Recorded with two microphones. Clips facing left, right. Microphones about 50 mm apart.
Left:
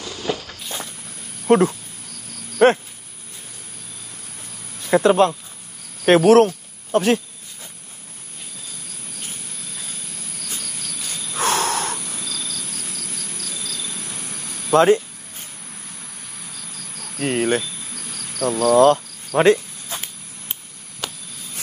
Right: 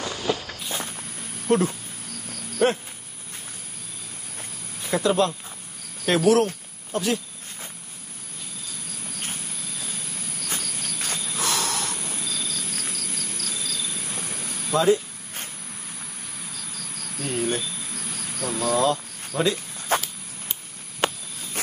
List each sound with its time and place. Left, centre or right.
0.2 s walk: centre
1.5 s speech: left
4.9 s speech: left
11.3 s snort: left
12.0 s cricket: centre
12.4 s cricket: right
12.9 s a sound: left
13.8 s a sound: centre
14.7 s speech: left
16.7 s cricket: centre
17.2 s cricket: left
18.4 s speech: left
19.9 s a sound: right
21.0 s a sound: right